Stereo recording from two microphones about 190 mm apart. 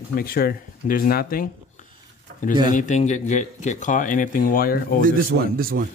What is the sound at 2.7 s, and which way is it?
Speech, 40° left (ahead or behind).